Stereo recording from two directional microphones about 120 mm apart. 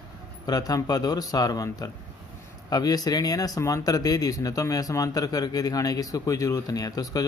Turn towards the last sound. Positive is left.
turn(degrees=30)  # may be behind; listen again after turning